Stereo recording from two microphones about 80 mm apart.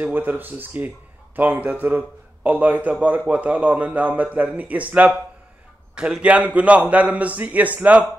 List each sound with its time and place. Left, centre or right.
0.0 s a man's voice: right